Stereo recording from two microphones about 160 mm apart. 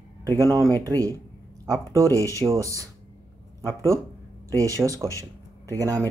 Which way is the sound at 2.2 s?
20° right (ahead or behind).